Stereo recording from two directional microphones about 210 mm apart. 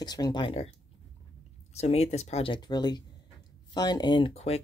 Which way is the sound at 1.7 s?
30° left (ahead or behind).